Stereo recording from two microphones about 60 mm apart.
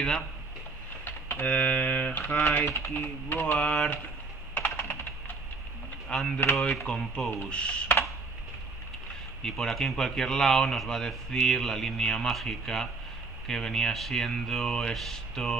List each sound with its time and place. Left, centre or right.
1.0 s typing: left
2.7 s speech: left
3.5 s speech: centre
4.6 s computer keyboard: left
6.0 s speech: centre
9.4 s speech: centre